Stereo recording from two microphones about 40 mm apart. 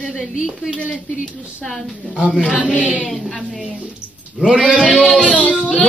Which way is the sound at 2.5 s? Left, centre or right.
Left.